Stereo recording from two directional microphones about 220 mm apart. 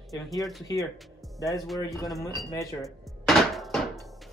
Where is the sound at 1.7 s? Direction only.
15° left (ahead or behind).